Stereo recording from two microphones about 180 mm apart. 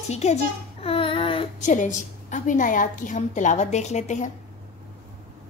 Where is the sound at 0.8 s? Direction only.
30° left (ahead or behind).